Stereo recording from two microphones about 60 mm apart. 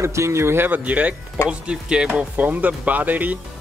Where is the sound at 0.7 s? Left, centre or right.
Right; by 2.2 s centre.